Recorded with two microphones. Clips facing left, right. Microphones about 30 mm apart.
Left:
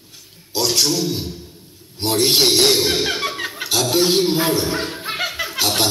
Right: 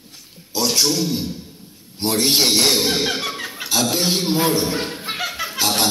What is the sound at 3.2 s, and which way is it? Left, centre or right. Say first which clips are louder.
Music: left 3 dB; left.